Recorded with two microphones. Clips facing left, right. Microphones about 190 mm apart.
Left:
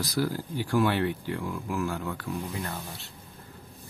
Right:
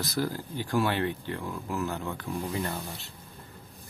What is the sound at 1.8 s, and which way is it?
Speech, 20° right (ahead or behind).